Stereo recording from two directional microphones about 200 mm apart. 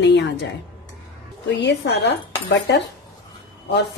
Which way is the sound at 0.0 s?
60° left (ahead or behind).